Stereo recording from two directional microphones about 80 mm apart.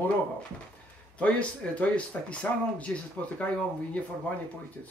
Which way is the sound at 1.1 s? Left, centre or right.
Centre.